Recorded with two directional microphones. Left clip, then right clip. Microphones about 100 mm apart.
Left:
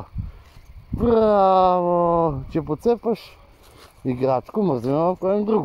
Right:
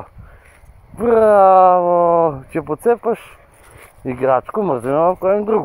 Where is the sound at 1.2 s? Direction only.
30° left (ahead or behind).